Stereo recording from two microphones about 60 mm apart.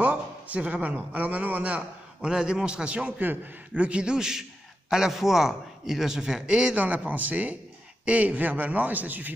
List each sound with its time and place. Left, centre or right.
0.0 s a sound: right
0.9 s a man's voice: right
2.2 s a man's voice: centre; by 9.3 s right